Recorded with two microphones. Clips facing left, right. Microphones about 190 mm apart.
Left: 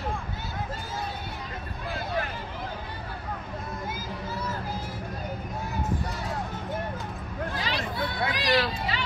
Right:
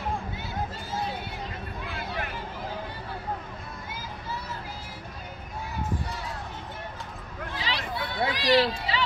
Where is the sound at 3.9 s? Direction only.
45° left (ahead or behind).